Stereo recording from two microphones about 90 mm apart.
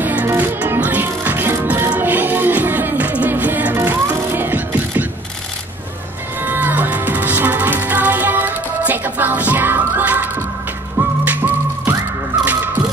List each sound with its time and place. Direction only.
0.0 s music: 20° right (ahead or behind)
6.4 s music: 20° right (ahead or behind)